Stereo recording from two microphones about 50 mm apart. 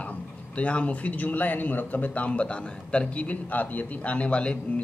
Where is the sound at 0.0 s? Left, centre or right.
Left.